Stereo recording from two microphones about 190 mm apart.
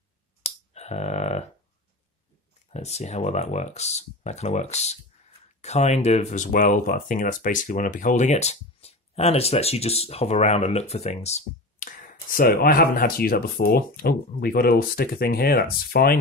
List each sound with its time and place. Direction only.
0.4 s finger snapping: 35° left (ahead or behind)
2.7 s speech: 35° left (ahead or behind); by 16.2 s 50° left (ahead or behind)